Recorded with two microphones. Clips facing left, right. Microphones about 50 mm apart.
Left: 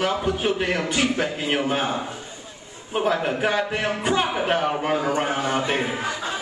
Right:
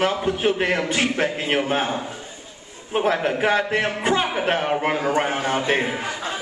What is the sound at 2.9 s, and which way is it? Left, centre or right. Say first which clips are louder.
A man's voice: right 2 dB; right.